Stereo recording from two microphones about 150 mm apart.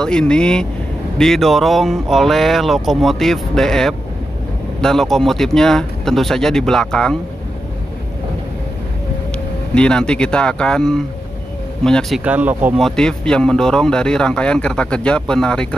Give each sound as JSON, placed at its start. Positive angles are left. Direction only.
{"t": 0.0, "sound": "speech", "side_deg": 5}
{"t": 9.8, "sound": "speech", "side_deg": 5}
{"t": 12.2, "sound": "speech", "side_deg": -10}
{"t": 12.8, "sound": "speech", "side_deg": 5}